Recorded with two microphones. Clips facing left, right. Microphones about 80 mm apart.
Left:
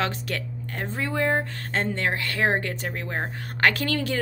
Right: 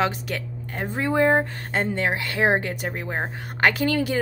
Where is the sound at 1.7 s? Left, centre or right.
Centre.